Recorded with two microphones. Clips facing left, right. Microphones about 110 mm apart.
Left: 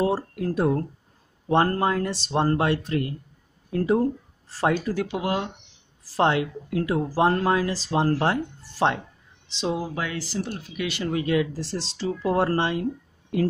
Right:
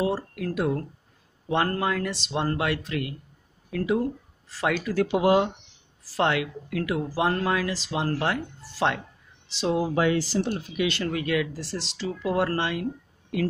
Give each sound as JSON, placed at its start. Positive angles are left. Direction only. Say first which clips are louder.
{"t": 0.0, "sound": "speech", "louder": "left 3 dB", "side_deg": 30}
{"t": 5.0, "sound": "speech", "louder": "right 6 dB", "side_deg": -15}
{"t": 6.1, "sound": "speech", "louder": "left 3 dB", "side_deg": 30}
{"t": 9.9, "sound": "speech", "louder": "right 6 dB", "side_deg": -25}
{"t": 10.9, "sound": "speech", "louder": "left 5 dB", "side_deg": 20}